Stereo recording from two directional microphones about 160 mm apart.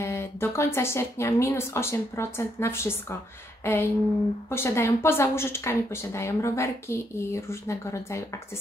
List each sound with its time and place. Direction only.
0.0 s speech: 15° left (ahead or behind)